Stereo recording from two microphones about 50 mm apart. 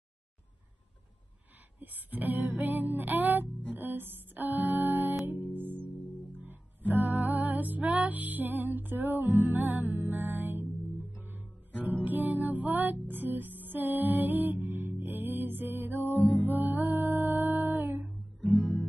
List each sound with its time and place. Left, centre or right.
1.8 s music: right
6.9 s music: right